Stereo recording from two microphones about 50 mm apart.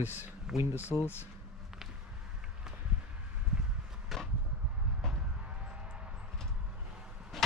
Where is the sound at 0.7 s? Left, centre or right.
Left.